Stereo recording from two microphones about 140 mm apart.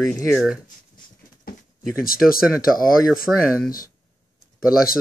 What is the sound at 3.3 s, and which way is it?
Speech, 10° right (ahead or behind).